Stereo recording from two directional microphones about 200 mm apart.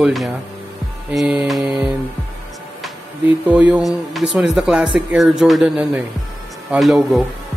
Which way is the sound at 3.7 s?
Centre (ahead or behind).